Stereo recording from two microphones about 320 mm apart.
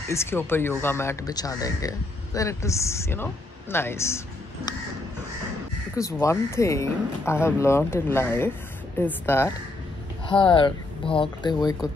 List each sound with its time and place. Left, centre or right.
0.1 s speech: centre
5.9 s speech: centre